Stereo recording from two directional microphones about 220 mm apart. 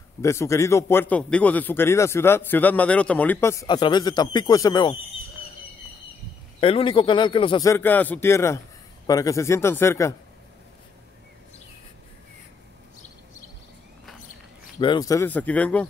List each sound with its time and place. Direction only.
0.2 s a man's voice: 15° left (ahead or behind)
6.6 s a man's voice: 25° left (ahead or behind)
14.8 s a man's voice: 20° left (ahead or behind)